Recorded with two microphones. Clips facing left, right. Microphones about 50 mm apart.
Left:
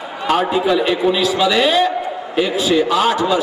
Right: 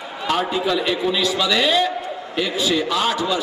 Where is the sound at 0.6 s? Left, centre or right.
Centre.